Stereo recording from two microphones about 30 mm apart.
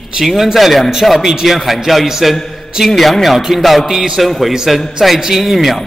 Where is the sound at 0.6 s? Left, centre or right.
Centre.